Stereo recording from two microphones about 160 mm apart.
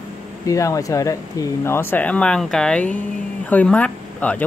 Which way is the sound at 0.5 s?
20° left (ahead or behind).